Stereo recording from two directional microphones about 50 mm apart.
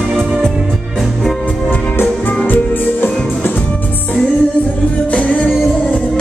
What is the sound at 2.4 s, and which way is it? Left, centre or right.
Music, left.